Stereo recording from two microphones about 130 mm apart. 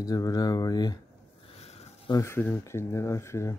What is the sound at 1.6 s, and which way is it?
Sniff, 55° left (ahead or behind).